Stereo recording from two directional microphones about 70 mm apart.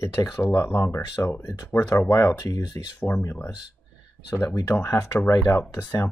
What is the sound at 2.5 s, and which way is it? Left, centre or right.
Speech, left.